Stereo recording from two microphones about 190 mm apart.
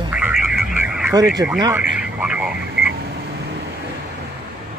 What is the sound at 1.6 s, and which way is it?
Radio, 10° right (ahead or behind).